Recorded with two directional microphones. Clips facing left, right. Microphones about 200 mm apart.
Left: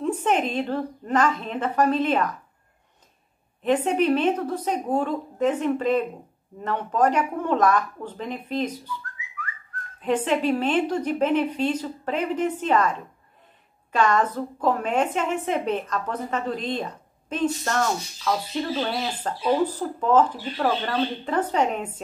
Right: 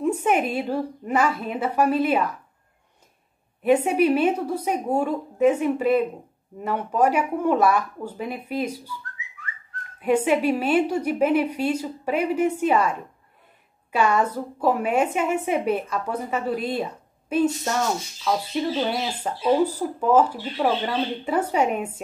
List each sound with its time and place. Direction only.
0.0 s a woman's voice: 10° right (ahead or behind)
3.6 s a woman's voice: 10° right (ahead or behind)
9.9 s a woman's voice: 10° right (ahead or behind)
13.9 s a woman's voice: 10° right (ahead or behind)